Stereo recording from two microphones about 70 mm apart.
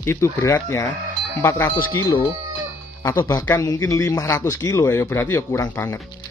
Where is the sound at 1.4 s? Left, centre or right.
Left.